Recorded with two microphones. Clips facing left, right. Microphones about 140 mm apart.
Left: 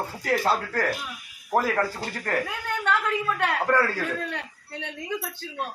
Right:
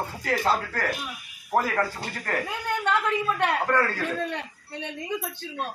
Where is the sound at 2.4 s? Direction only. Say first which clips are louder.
Right 1 dB; 15° right (ahead or behind).